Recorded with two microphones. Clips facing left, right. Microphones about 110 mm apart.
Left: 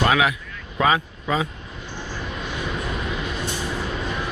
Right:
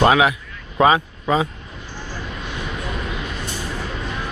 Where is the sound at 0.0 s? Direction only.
25° right (ahead or behind).